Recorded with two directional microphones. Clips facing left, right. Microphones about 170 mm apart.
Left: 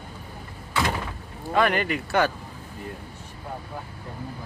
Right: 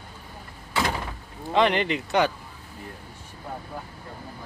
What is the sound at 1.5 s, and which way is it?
Speech, 20° right (ahead or behind).